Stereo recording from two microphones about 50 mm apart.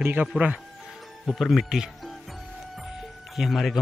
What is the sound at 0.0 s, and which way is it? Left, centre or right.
Speech, right.